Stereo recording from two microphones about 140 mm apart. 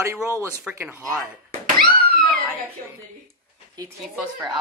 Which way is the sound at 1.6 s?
90° right.